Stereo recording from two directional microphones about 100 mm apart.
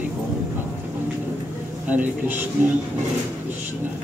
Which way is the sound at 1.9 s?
15° right (ahead or behind).